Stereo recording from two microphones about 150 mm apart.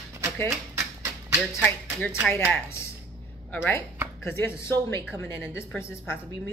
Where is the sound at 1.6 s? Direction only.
10° left (ahead or behind).